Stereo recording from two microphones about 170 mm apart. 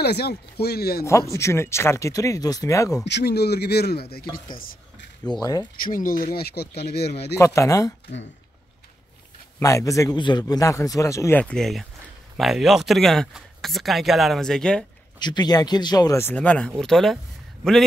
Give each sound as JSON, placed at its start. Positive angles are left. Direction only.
{"t": 0.0, "sound": "speech", "side_deg": 70}
{"t": 1.3, "sound": "a man's voice", "side_deg": 15}
{"t": 3.1, "sound": "speech", "side_deg": 80}
{"t": 5.3, "sound": "speech", "side_deg": 25}
{"t": 5.9, "sound": "speech", "side_deg": 55}
{"t": 7.3, "sound": "speech", "side_deg": 20}
{"t": 9.6, "sound": "a man's voice", "side_deg": 20}
{"t": 15.1, "sound": "a man's voice", "side_deg": 25}